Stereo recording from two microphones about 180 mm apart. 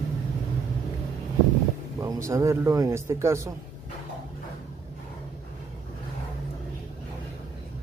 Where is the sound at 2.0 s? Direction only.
15° right (ahead or behind).